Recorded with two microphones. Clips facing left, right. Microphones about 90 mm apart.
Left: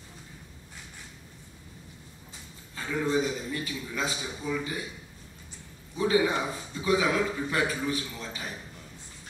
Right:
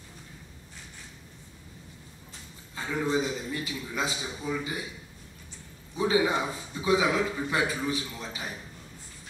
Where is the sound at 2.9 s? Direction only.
10° right (ahead or behind).